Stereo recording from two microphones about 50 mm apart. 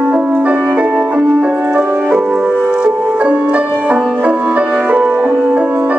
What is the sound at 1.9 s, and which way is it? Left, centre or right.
Music, right.